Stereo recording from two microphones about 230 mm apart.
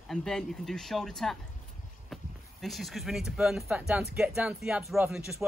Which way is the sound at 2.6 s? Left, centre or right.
Centre.